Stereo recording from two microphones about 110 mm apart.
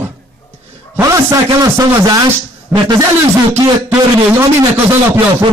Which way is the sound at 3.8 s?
20° right (ahead or behind).